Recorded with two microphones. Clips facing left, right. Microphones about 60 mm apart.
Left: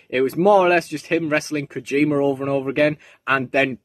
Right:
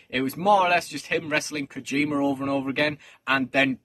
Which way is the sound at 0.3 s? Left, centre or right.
Left.